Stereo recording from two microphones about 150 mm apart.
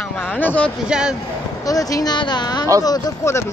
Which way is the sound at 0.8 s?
5° right (ahead or behind).